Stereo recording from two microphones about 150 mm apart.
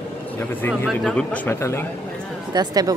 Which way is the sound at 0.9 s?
10° left (ahead or behind).